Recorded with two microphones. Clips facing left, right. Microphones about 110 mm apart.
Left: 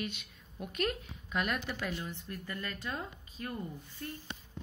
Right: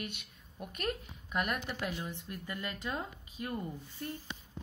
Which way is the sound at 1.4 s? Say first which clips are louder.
Even; 10° right (ahead or behind).